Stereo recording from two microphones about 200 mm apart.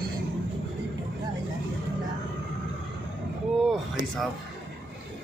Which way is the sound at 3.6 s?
Centre (ahead or behind).